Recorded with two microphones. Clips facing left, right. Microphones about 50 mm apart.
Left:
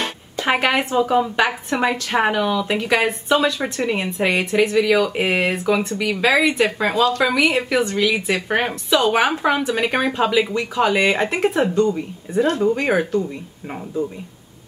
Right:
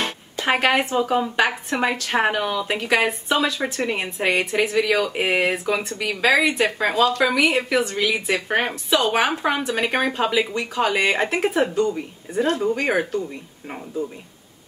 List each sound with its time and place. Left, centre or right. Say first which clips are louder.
0.4 s a woman's voice: left 1 dB; centre
8.4 s a woman's voice: left 2 dB; centre